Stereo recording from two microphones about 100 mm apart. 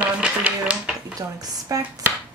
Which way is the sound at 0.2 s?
10° right (ahead or behind).